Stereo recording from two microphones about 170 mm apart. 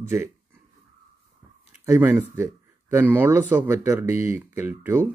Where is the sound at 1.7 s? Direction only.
10° right (ahead or behind).